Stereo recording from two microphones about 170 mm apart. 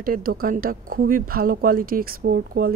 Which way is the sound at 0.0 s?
55° right (ahead or behind).